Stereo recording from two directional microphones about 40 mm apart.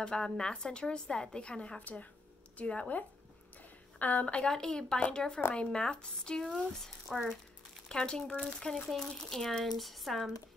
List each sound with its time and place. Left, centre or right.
0.0 s a woman's voice: left
1.8 s speech: left
2.5 s speech: left
4.4 s a woman's voice: centre
7.1 s speech: centre
7.9 s a woman's voice: left
8.8 s speech: centre